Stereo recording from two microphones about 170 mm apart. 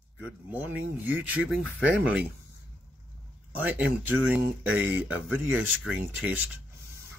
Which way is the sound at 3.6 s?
10° right (ahead or behind).